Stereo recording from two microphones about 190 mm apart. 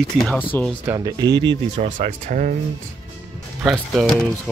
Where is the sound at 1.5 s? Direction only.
40° right (ahead or behind).